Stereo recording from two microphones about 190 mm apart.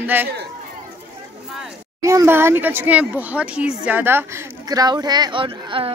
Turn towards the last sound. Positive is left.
turn(degrees=-25)  # may be behind; listen again after turning